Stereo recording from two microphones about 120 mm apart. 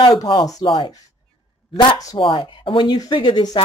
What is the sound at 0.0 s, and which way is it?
Speech, 35° left (ahead or behind).